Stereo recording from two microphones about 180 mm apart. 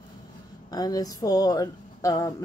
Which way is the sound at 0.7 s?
20° left (ahead or behind).